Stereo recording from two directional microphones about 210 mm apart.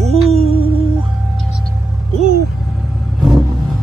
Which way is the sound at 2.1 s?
35° right (ahead or behind).